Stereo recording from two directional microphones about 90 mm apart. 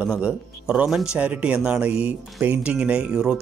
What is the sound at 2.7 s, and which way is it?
Speech, 10° right (ahead or behind).